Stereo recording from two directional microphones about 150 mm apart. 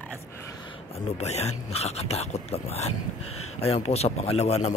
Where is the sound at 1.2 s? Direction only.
45° left (ahead or behind).